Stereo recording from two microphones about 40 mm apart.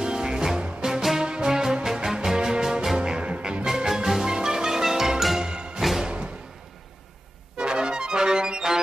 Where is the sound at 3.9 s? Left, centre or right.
Centre.